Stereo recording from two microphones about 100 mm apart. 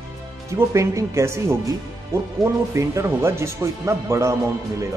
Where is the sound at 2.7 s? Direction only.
30° right (ahead or behind).